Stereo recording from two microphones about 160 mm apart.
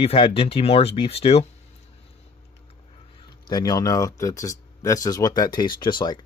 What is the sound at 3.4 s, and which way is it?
Speech, 25° left (ahead or behind).